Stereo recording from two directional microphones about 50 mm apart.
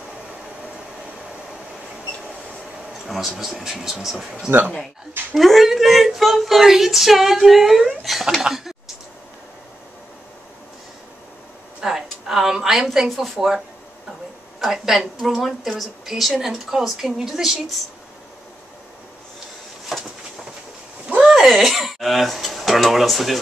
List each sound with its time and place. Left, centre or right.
3.1 s speech: centre
4.5 s speech: right
5.3 s speech: centre
11.8 s a woman's voice: centre
14.6 s speech: centre
21.3 s speech: centre